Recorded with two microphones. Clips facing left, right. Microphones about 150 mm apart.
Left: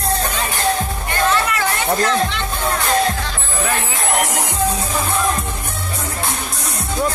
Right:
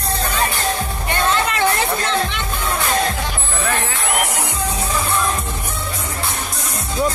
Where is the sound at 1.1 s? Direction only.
25° right (ahead or behind).